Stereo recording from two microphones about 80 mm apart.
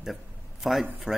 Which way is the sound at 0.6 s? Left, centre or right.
Centre.